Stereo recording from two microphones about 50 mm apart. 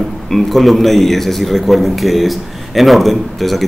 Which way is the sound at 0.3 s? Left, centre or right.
Centre.